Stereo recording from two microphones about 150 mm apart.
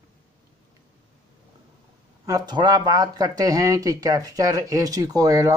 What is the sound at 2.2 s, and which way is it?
Speech, 25° right (ahead or behind).